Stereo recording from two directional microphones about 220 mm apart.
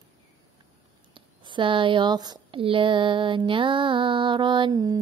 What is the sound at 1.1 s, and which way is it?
Speech, 20° right (ahead or behind).